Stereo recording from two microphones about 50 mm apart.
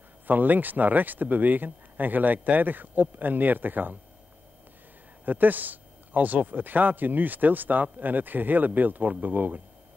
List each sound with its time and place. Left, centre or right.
0.3 s speech: right
5.2 s speech: right